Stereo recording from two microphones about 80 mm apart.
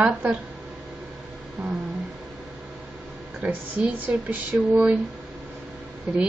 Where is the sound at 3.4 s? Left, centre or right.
Centre.